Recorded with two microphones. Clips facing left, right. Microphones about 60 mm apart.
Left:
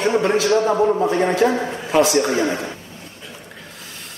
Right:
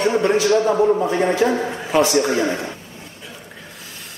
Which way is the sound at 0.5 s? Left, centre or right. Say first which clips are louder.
Even; left.